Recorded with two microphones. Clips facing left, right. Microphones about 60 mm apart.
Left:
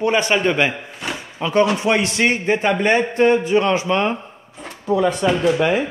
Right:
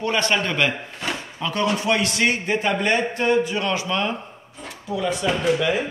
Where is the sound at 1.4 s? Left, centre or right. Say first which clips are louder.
Left 6 dB; left.